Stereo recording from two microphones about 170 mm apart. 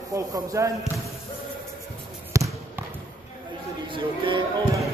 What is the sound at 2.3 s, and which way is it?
Basketball bounce, 15° right (ahead or behind).